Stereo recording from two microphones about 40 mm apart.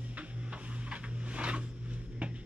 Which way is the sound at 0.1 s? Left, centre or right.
Right.